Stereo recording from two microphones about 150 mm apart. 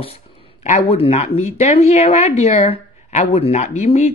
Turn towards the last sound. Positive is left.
turn(degrees=45)  # may be behind; listen again after turning